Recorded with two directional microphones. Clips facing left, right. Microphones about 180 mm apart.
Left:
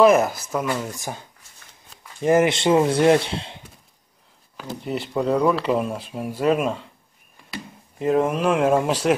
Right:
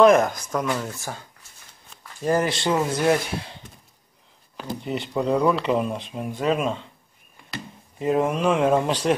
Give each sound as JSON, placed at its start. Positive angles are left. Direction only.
{"t": 0.0, "sound": "speech", "side_deg": 5}
{"t": 2.2, "sound": "speech", "side_deg": 20}
{"t": 4.6, "sound": "speech", "side_deg": 0}